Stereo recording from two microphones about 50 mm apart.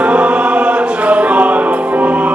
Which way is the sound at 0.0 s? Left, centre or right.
Right.